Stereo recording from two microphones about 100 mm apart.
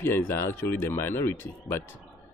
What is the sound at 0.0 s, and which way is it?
Speech, 25° left (ahead or behind).